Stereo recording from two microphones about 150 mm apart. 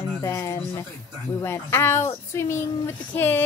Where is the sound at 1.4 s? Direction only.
15° left (ahead or behind).